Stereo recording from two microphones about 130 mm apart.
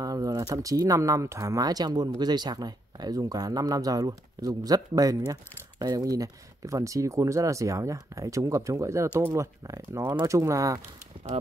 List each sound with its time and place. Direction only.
0.0 s speech: 30° right (ahead or behind)